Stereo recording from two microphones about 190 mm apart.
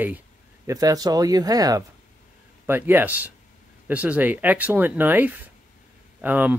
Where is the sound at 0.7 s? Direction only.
20° right (ahead or behind).